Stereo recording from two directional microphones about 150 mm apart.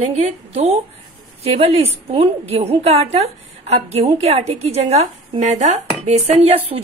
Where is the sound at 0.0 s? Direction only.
45° right (ahead or behind).